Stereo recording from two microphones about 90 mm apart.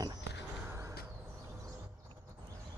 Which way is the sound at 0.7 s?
35° right (ahead or behind).